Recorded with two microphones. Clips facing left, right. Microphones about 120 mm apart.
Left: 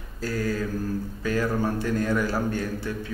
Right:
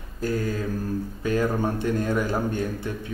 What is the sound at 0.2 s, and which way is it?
Speech, 20° right (ahead or behind).